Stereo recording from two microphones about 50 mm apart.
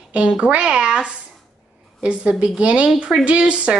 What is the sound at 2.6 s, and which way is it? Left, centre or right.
A woman's voice, right.